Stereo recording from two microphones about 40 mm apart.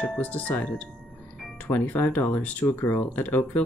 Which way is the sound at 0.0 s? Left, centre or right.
Left.